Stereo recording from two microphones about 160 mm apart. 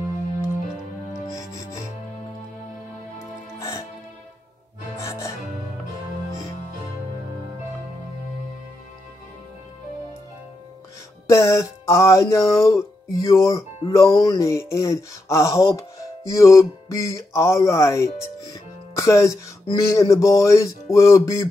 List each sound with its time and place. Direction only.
1.3 s music: 20° left (ahead or behind)
3.5 s music: 20° left (ahead or behind)
4.9 s music: 20° left (ahead or behind)
11.2 s music: 20° left (ahead or behind)